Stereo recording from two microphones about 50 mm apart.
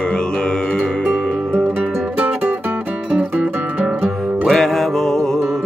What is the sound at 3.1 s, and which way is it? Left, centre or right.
Music, right.